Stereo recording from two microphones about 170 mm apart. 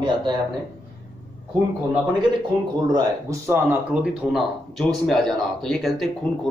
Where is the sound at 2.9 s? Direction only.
20° right (ahead or behind).